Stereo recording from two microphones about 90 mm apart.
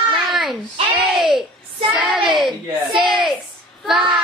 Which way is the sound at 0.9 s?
5° right (ahead or behind).